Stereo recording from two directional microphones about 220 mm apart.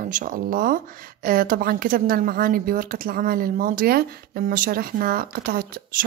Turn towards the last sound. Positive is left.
turn(degrees=-45)  # may be behind; listen again after turning